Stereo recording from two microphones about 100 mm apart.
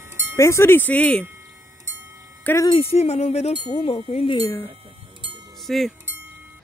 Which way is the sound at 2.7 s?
85° left.